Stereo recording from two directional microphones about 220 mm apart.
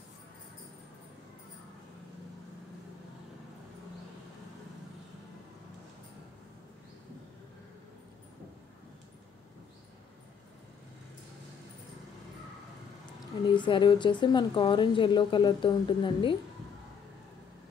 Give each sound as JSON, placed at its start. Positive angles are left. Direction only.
{"t": 13.5, "sound": "a woman's voice", "side_deg": 20}